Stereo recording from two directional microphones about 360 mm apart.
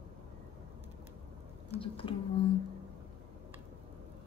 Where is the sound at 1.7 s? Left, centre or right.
Centre.